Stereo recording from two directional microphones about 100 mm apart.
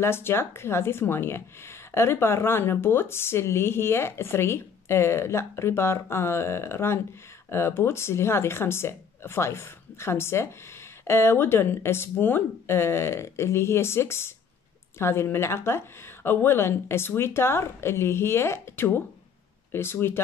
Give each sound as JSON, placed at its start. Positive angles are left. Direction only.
{"t": 0.0, "sound": "speech", "side_deg": 25}